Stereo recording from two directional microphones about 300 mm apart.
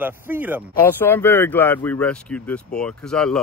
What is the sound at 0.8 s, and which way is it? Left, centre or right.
Speech, centre.